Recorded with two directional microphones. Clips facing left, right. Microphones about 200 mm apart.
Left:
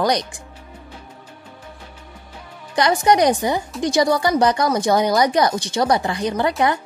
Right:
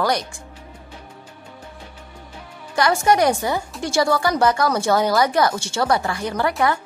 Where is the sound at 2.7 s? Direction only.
20° left (ahead or behind).